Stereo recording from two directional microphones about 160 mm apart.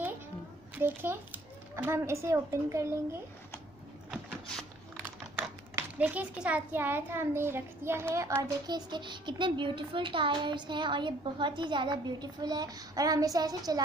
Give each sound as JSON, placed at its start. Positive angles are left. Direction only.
{"t": 0.7, "sound": "a child's voice", "side_deg": -15}
{"t": 4.1, "sound": "a sound", "side_deg": 5}
{"t": 5.8, "sound": "a child's voice", "side_deg": -10}